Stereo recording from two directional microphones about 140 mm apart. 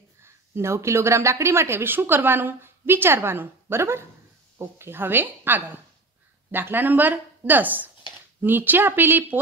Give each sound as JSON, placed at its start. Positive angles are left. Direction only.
{"t": 0.2, "sound": "a woman's voice", "side_deg": -20}